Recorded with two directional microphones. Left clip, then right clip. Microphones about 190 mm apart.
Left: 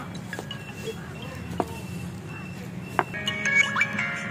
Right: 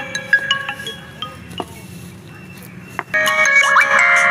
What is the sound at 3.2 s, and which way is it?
Music, 45° right (ahead or behind).